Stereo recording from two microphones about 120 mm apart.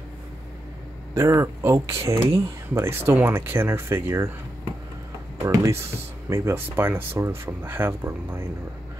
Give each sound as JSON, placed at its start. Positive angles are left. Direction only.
{"t": 1.1, "sound": "speech", "side_deg": -25}
{"t": 5.4, "sound": "speech", "side_deg": -25}